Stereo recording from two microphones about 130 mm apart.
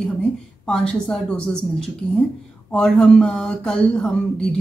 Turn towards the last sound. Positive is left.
turn(degrees=5)  # may be behind; listen again after turning